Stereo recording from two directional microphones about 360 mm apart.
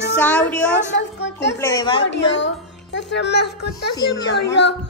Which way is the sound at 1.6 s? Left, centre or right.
Centre.